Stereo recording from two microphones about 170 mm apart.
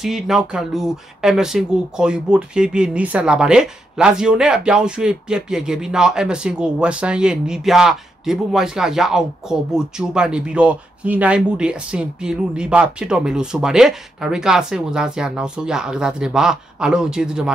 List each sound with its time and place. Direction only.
0.0 s speech: centre (ahead or behind)